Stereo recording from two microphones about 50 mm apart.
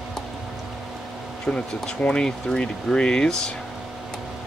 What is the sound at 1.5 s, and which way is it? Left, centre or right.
Speech, left.